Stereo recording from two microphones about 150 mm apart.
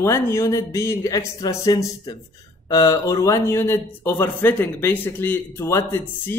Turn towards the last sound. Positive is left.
turn(degrees=15)  # may be behind; listen again after turning